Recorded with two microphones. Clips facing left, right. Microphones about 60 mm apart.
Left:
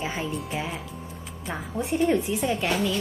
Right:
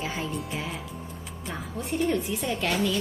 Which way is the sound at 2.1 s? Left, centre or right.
Centre.